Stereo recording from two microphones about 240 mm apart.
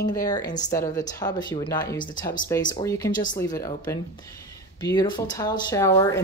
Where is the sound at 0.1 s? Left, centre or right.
Centre.